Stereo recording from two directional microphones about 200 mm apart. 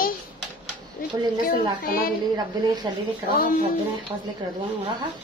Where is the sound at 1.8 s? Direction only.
45° left (ahead or behind).